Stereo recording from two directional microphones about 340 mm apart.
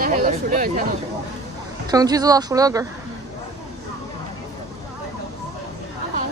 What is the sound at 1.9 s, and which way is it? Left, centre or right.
Speech, centre.